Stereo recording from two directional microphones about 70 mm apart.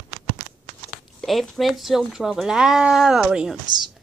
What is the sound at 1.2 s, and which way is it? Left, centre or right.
Speech, centre.